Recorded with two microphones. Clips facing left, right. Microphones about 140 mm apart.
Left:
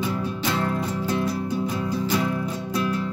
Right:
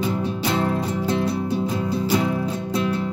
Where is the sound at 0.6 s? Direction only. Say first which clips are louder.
Right 3 dB; 25° right (ahead or behind).